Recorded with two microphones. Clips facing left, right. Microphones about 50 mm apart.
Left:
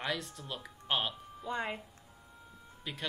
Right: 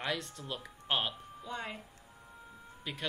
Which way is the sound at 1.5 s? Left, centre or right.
Left.